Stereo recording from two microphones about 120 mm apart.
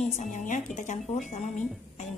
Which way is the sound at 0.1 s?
90° left.